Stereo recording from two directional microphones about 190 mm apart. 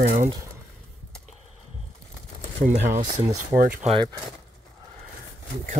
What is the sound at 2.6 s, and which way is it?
Speech, 40° right (ahead or behind).